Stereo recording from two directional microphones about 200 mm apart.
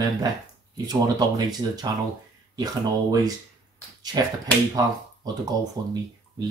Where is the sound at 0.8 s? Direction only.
20° right (ahead or behind).